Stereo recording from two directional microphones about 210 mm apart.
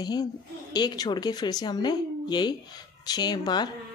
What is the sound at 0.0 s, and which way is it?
Speech, 20° left (ahead or behind).